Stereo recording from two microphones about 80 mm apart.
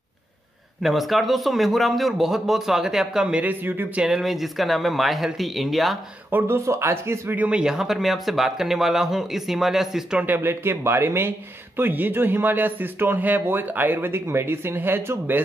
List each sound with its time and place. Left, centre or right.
0.8 s speech: centre
3.6 s speech: right
4.0 s speech: centre
6.3 s speech: right
7.3 s speech: centre
10.2 s speech: right